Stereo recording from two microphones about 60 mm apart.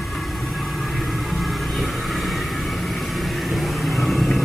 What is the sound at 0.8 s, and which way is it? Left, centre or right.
Vehicle, centre.